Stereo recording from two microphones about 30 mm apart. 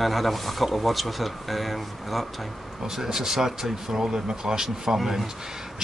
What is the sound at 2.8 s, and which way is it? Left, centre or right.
Speech, centre.